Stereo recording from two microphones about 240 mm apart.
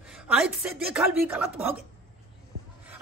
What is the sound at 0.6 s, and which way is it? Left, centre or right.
Speech, centre.